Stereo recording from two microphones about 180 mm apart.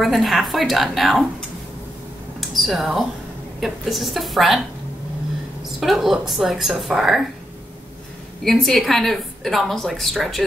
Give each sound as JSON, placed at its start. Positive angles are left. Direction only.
{"t": 0.0, "sound": "a woman's voice", "side_deg": 0}
{"t": 2.5, "sound": "a woman's voice", "side_deg": 0}
{"t": 5.8, "sound": "a woman's voice", "side_deg": 0}
{"t": 8.5, "sound": "a woman's voice", "side_deg": 0}